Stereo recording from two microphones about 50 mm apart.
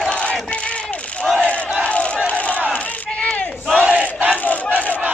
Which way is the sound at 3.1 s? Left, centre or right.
Left.